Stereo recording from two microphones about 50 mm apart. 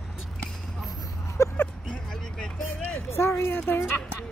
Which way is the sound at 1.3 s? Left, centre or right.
Left.